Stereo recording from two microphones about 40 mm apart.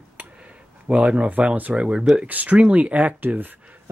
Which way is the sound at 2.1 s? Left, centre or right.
Right.